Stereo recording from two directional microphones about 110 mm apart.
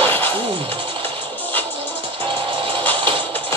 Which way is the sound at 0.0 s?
20° left (ahead or behind).